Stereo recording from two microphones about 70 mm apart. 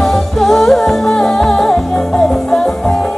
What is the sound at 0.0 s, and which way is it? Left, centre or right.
Music, centre.